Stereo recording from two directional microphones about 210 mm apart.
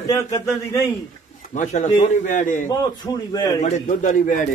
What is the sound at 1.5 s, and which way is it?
Speech, 35° left (ahead or behind).